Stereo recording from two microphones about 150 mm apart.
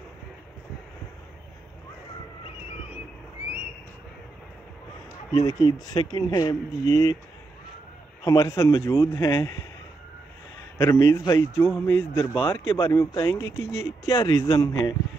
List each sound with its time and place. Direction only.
5.3 s speech: 25° left (ahead or behind)
8.2 s speech: 20° left (ahead or behind)
10.8 s speech: 20° left (ahead or behind)